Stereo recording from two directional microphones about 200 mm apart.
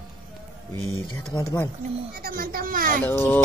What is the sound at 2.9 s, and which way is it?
Speech, 10° left (ahead or behind).